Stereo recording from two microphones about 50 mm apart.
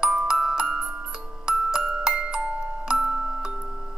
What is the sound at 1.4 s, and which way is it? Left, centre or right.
Music, centre.